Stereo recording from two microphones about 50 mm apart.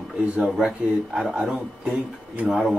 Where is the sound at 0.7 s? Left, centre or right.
Centre.